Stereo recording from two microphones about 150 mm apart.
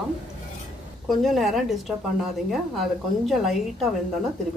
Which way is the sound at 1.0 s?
Centre (ahead or behind).